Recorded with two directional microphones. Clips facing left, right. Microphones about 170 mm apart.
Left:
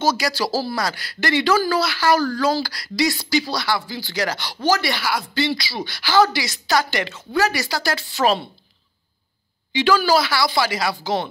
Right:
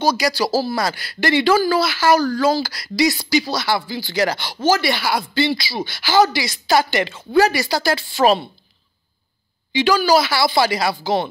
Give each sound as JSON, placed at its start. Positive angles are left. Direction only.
{"t": 0.0, "sound": "speech", "side_deg": -15}
{"t": 0.5, "sound": "speech", "side_deg": -25}
{"t": 9.7, "sound": "speech", "side_deg": -10}